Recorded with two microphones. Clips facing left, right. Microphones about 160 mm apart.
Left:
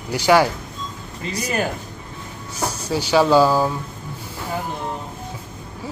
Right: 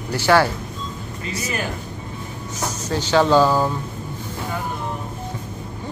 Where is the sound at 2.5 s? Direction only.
10° left (ahead or behind).